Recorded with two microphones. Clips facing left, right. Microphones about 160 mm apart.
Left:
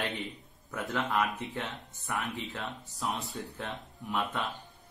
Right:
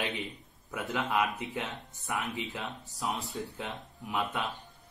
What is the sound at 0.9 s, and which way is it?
Speech, 20° right (ahead or behind).